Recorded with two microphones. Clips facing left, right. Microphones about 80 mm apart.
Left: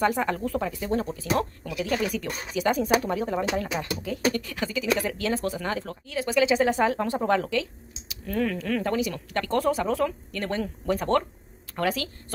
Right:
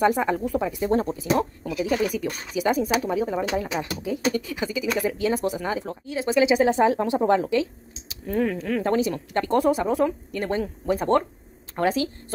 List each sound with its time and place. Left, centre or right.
0.0 s speech: centre
8.8 s speech: right